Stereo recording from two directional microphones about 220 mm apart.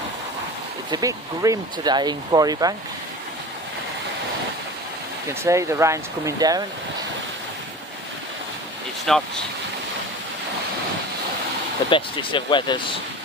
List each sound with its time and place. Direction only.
0.8 s speech: 15° right (ahead or behind)
5.4 s speech: 15° right (ahead or behind)
9.1 s speech: centre (ahead or behind)
11.9 s speech: 20° left (ahead or behind)